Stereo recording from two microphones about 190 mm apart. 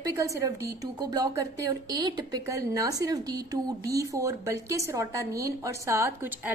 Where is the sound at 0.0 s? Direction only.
15° right (ahead or behind).